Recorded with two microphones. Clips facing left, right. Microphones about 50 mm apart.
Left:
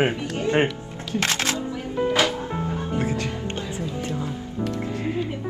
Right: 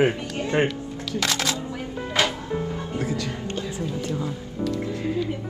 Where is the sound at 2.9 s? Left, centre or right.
Left.